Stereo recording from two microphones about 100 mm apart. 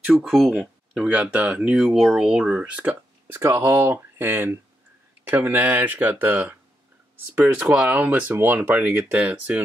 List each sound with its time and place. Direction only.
0.0 s speech: 5° right (ahead or behind)
3.3 s speech: 25° right (ahead or behind)